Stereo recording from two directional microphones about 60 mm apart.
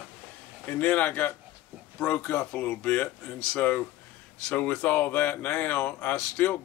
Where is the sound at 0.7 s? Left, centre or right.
Left.